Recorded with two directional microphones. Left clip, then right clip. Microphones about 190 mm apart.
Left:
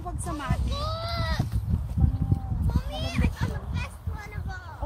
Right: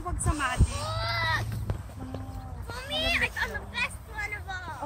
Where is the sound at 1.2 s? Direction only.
85° left.